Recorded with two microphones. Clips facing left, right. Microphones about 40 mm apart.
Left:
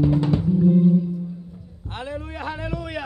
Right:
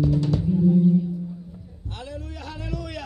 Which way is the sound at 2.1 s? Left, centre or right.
Left.